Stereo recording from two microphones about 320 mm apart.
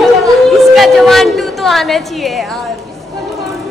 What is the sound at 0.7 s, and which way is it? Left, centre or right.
A woman's voice, centre.